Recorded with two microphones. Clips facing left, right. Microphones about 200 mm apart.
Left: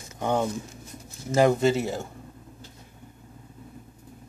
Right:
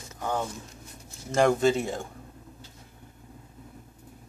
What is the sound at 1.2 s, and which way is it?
Speech, centre (ahead or behind).